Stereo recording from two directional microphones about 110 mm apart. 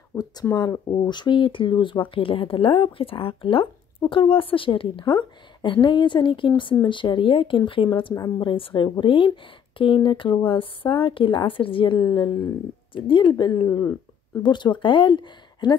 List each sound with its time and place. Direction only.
0.2 s a woman's voice: 35° left (ahead or behind)